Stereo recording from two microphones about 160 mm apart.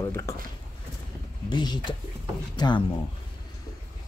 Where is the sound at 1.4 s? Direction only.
30° left (ahead or behind).